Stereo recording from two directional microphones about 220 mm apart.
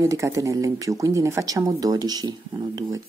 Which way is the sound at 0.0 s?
15° right (ahead or behind).